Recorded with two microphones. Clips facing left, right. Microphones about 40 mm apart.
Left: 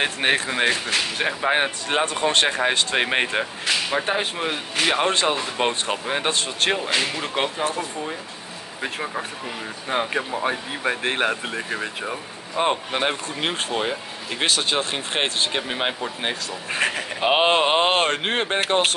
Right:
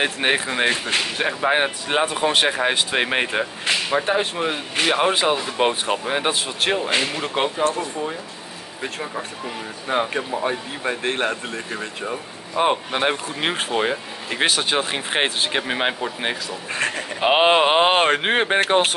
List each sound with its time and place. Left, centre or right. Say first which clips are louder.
0.0 s speech: right 1 dB; centre
8.8 s speech: left 1 dB; centre
12.5 s speech: right 2 dB; centre
16.7 s speech: left 1 dB; centre
17.2 s speech: right 3 dB; centre